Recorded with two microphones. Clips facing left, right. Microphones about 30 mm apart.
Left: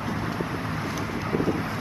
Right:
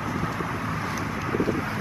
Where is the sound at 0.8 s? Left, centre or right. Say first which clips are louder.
Right 1 dB; centre.